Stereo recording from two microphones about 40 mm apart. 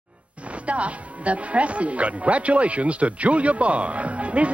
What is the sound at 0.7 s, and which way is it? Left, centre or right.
Speech, right.